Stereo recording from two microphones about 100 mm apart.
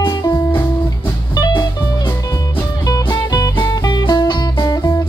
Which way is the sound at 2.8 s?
40° left (ahead or behind).